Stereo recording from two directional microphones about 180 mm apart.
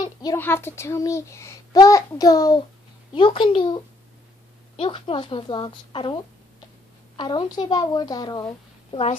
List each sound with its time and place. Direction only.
0.0 s a child's voice: 20° left (ahead or behind)